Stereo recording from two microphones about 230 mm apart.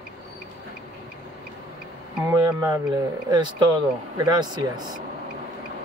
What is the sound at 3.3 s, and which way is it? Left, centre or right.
Speech, centre.